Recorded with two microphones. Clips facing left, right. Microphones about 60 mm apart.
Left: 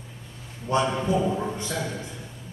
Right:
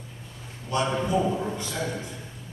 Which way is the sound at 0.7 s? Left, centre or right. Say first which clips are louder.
Left 3 dB; left.